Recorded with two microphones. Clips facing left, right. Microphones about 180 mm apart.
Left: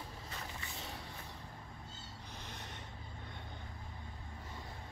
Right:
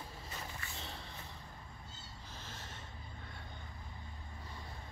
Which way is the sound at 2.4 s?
15° left (ahead or behind).